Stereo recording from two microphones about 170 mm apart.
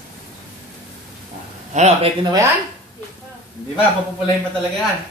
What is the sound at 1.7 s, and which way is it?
Speech, 45° right (ahead or behind).